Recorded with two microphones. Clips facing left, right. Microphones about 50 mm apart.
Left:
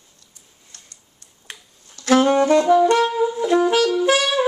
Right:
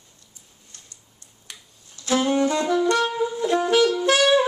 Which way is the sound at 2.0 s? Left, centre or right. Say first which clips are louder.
Left 5 dB; left.